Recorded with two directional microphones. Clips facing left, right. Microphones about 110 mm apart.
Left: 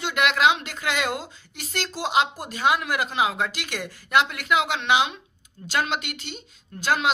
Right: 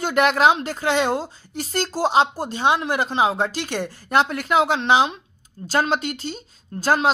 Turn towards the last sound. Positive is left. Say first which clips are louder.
# right 4 dB
turn(degrees=-35)  # may be behind; listen again after turning